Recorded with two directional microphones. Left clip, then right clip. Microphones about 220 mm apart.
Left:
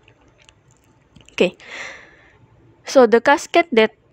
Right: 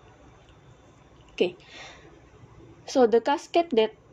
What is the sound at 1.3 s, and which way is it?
Speech, 45° left (ahead or behind).